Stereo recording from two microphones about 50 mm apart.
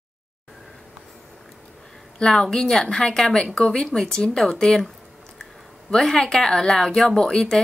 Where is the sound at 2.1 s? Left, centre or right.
Centre.